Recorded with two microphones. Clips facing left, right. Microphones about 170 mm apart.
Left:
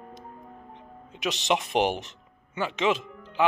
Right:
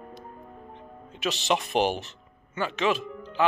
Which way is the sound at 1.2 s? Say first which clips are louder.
Even; 20° left (ahead or behind).